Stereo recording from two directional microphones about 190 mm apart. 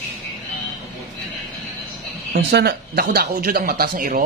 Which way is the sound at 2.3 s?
55° right (ahead or behind).